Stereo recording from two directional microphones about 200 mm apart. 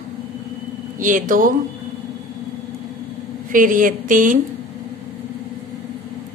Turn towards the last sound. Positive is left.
turn(degrees=-40)  # may be behind; listen again after turning